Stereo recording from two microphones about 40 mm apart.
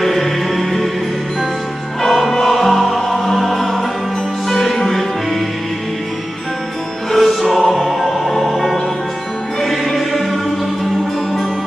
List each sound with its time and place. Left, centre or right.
0.0 s music: centre
2.0 s music: centre
7.1 s music: centre
9.9 s choir: centre